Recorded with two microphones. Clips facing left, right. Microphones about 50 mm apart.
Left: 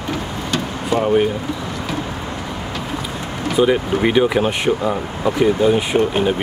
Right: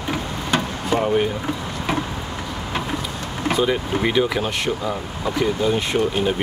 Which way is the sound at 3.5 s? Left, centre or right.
Centre.